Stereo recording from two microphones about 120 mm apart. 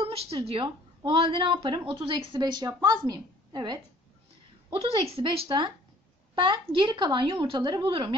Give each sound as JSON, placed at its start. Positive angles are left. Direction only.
{"t": 0.0, "sound": "a woman's voice", "side_deg": -50}
{"t": 4.7, "sound": "a child's voice", "side_deg": -55}